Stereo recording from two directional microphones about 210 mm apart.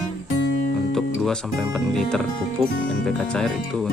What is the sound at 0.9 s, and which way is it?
Speech, centre (ahead or behind).